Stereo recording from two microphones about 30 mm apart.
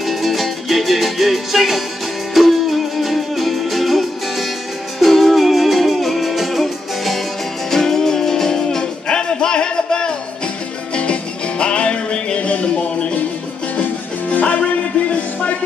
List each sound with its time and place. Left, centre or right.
0.0 s music: centre
7.7 s music: centre; by 12.4 s left
12.4 s music: left
14.3 s music: left